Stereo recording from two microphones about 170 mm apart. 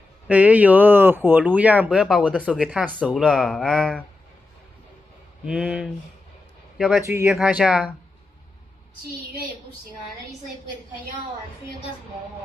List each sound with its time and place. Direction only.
0.3 s speech: 10° right (ahead or behind)
5.4 s speech: 5° right (ahead or behind)
7.0 s speech: 15° right (ahead or behind)
7.2 s speech: 5° right (ahead or behind)